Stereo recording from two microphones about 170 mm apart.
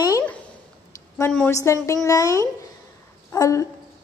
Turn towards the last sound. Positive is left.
turn(degrees=20)  # may be behind; listen again after turning